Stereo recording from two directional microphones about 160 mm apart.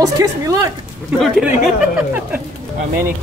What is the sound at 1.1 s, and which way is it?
Speech, centre (ahead or behind).